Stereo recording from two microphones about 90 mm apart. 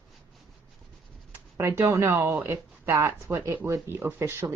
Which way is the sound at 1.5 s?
30° right (ahead or behind).